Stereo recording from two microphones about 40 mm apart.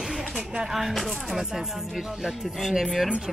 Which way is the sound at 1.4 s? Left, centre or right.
Centre.